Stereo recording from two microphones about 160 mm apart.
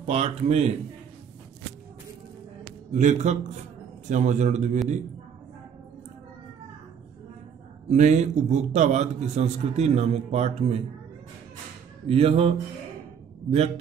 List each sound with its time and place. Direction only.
0.0 s a man's voice: 40° right (ahead or behind)
2.9 s a man's voice: 50° right (ahead or behind)
7.9 s a man's voice: 50° right (ahead or behind)
12.1 s a man's voice: 40° right (ahead or behind)